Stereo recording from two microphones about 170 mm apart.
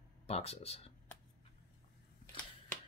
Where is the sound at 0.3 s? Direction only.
35° left (ahead or behind).